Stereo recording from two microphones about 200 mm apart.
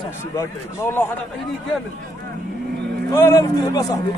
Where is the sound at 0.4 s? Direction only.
10° left (ahead or behind).